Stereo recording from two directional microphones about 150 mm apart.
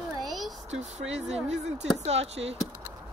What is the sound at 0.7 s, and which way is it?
Speech, 50° right (ahead or behind).